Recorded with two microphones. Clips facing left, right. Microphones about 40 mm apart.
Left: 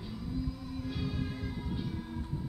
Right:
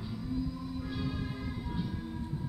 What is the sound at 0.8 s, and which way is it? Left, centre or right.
Music, centre.